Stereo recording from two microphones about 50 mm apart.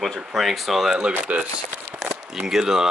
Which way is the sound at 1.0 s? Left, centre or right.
Right.